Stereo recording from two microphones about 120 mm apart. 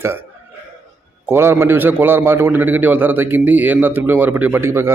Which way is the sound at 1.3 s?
20° right (ahead or behind).